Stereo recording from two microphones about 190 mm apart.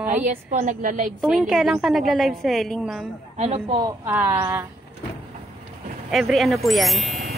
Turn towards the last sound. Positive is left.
turn(degrees=0)  # may be behind; listen again after turning